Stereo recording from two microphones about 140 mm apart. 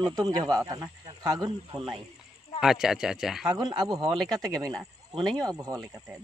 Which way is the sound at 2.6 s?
5° right (ahead or behind).